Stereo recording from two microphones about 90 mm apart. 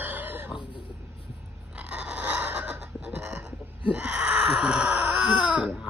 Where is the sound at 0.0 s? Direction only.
20° right (ahead or behind).